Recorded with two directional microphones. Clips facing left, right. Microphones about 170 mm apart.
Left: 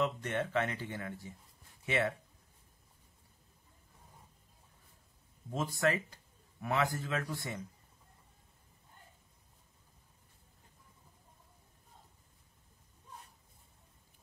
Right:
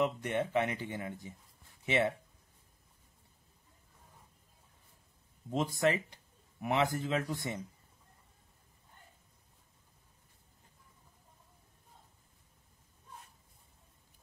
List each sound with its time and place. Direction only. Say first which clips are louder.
0.0 s speech: right 2 dB; 15° right (ahead or behind)
5.5 s speech: right 2 dB; 20° right (ahead or behind)